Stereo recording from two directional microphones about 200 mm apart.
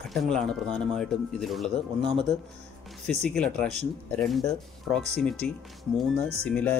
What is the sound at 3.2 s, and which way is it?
Speech, 5° left (ahead or behind).